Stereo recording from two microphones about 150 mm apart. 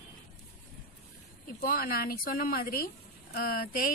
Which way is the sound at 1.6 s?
80° left.